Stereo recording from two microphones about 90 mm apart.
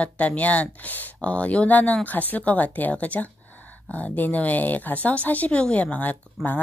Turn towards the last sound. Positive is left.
turn(degrees=20)  # may be behind; listen again after turning